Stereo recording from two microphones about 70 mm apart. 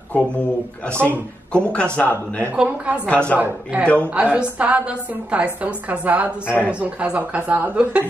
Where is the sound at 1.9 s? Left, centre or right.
Left.